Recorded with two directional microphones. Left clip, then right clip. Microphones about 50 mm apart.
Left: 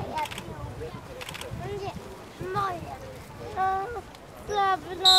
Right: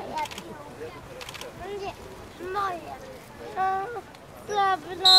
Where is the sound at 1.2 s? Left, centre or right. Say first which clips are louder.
Left 1 dB; left.